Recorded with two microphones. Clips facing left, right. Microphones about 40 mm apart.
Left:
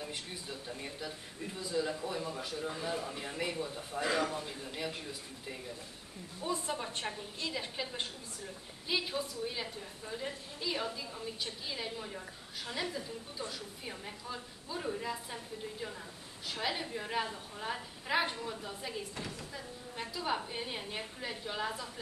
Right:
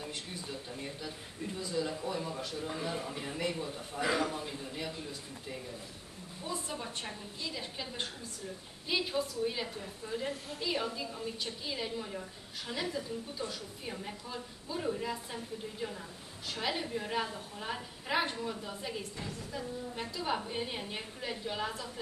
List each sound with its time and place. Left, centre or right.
0.5 s a woman's voice: centre
6.4 s a woman's voice: centre
8.8 s a woman's voice: centre